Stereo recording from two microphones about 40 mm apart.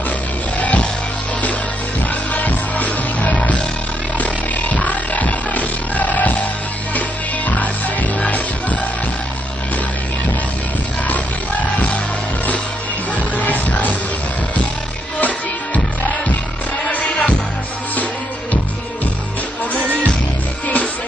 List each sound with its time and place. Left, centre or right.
0.6 s music: left
2.3 s music: left
13.1 s music: left
15.1 s music: left
16.8 s music: left
20.6 s music: left